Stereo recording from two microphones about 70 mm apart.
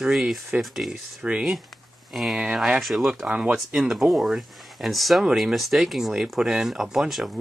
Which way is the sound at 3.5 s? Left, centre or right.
Centre.